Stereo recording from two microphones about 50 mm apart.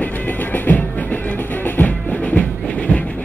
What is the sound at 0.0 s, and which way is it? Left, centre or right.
Music, left.